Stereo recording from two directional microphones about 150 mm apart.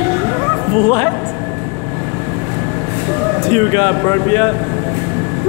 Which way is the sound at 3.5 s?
35° left (ahead or behind).